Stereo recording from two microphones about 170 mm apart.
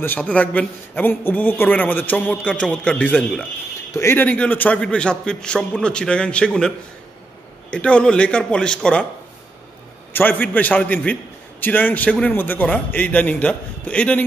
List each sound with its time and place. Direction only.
0.0 s a man's voice: 10° left (ahead or behind)
7.7 s a man's voice: 5° left (ahead or behind)
10.1 s a man's voice: 10° left (ahead or behind)